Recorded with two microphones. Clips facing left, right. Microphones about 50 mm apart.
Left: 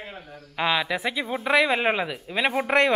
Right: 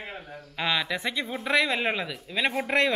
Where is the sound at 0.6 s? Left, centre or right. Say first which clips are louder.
Left 3 dB; centre.